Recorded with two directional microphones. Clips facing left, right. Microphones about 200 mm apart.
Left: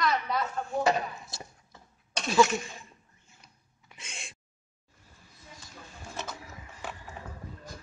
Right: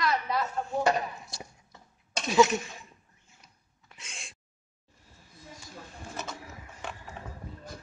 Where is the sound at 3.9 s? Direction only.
Centre (ahead or behind).